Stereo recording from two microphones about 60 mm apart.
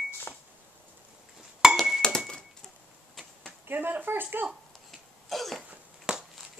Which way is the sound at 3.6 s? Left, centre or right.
Right.